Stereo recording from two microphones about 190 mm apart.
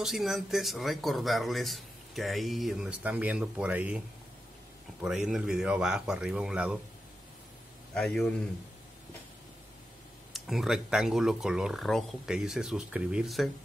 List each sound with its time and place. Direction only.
0.0 s speech: centre (ahead or behind)
5.0 s speech: centre (ahead or behind)
7.9 s speech: 5° left (ahead or behind)
10.3 s speech: centre (ahead or behind)